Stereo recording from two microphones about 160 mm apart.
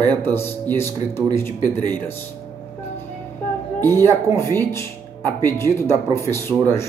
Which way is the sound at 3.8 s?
15° left (ahead or behind).